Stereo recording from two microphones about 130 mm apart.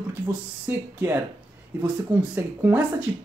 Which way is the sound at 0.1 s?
10° right (ahead or behind).